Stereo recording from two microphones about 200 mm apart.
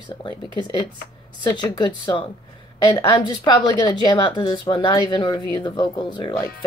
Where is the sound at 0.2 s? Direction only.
25° left (ahead or behind).